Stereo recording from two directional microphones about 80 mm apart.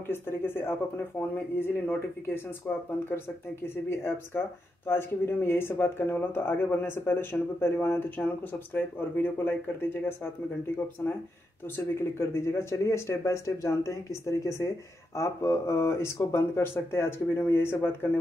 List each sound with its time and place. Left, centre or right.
0.0 s speech: left